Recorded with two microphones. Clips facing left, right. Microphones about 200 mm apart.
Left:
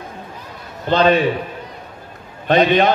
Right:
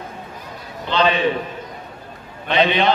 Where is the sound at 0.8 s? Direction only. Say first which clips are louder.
Left 5 dB; 45° left (ahead or behind).